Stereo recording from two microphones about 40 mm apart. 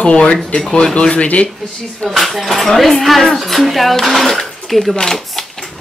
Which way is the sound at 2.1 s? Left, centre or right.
Centre.